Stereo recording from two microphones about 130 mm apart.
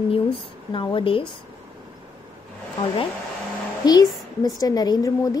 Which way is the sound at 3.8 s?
30° left (ahead or behind).